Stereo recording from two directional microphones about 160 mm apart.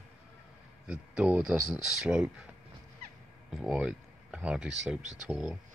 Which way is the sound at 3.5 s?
5° right (ahead or behind).